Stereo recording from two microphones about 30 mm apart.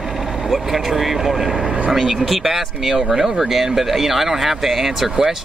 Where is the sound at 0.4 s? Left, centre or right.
Centre.